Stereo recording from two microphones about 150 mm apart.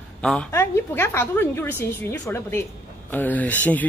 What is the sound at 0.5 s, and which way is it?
Speech, 15° left (ahead or behind).